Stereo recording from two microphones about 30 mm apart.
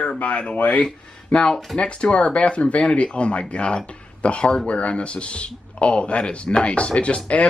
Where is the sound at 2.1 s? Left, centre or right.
Left.